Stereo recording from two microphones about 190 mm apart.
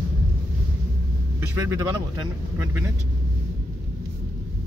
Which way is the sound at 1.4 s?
15° right (ahead or behind).